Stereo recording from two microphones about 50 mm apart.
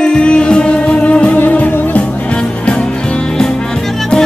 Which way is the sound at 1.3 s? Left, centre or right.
Left.